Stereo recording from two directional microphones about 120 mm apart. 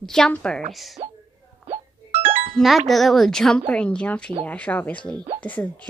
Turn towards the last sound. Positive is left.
turn(degrees=10)  # may be behind; listen again after turning